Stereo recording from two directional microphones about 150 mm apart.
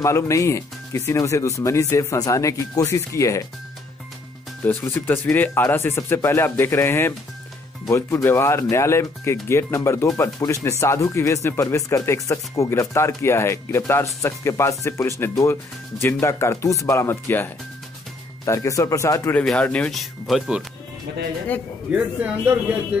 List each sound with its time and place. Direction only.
0.0 s speech: 20° left (ahead or behind)
4.6 s speech: 15° left (ahead or behind)
19.3 s speech: 5° left (ahead or behind)
21.9 s speech: 10° right (ahead or behind)